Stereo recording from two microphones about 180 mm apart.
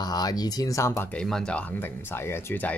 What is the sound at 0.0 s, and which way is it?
Speech, 20° left (ahead or behind).